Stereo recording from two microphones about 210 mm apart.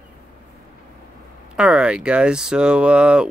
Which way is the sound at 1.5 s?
5° right (ahead or behind).